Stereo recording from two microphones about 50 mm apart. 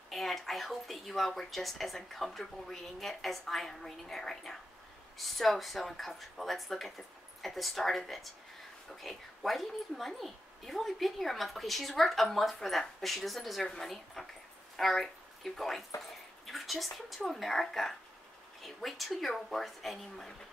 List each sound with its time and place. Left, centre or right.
0.1 s a woman's voice: centre